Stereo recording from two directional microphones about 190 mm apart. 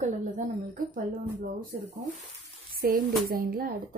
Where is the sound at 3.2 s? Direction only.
50° right (ahead or behind).